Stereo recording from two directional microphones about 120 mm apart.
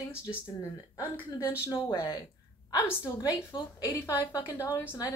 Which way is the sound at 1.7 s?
30° left (ahead or behind).